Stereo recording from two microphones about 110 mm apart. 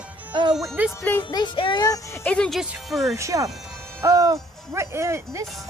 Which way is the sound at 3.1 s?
30° right (ahead or behind).